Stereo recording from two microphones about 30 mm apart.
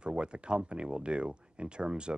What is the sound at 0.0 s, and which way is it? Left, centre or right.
Speech, right.